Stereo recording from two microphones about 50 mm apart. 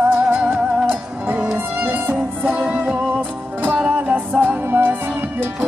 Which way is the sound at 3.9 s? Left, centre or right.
Right.